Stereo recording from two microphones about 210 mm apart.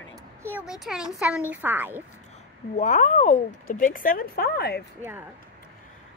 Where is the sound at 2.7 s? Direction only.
35° left (ahead or behind).